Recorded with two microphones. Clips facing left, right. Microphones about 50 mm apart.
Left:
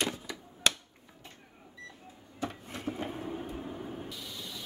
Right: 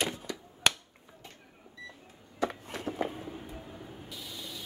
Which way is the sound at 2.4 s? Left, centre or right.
Right.